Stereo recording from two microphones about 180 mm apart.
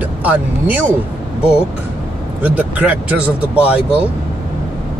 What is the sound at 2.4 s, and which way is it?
Speech, 10° right (ahead or behind).